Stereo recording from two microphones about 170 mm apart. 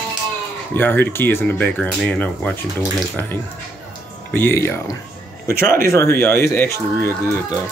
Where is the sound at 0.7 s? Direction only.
10° left (ahead or behind).